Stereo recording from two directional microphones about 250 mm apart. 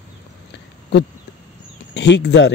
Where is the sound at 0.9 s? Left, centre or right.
Left.